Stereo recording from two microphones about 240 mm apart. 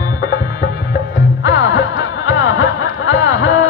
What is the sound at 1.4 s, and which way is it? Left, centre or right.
Music, left.